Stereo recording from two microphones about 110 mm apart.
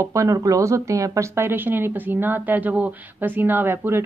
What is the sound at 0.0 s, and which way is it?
Speech, 30° right (ahead or behind).